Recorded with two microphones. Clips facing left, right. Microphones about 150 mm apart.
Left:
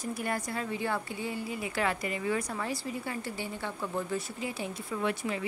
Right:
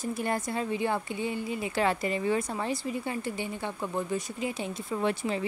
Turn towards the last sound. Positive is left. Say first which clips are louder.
# right 3 dB
turn(degrees=-30)  # may be behind; listen again after turning